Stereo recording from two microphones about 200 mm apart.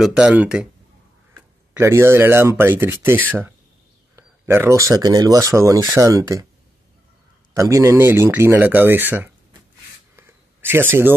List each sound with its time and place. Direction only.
0.0 s speech: 5° right (ahead or behind)
1.7 s speech: 15° right (ahead or behind)
7.5 s speech: 15° right (ahead or behind)
10.1 s a sound: 10° right (ahead or behind)